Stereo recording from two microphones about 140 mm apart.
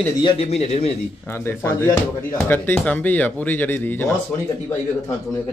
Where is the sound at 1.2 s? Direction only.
15° left (ahead or behind).